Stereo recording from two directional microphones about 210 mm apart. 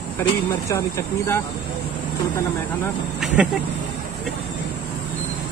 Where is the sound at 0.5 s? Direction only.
10° left (ahead or behind).